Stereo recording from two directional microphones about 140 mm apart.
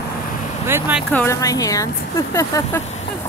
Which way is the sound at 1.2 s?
25° left (ahead or behind).